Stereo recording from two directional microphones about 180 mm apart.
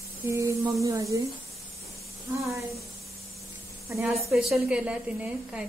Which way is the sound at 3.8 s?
15° right (ahead or behind).